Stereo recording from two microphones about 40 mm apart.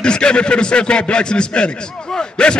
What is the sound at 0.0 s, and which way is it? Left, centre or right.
A man's voice, left.